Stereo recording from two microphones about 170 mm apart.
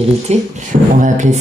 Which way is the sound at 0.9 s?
45° right (ahead or behind).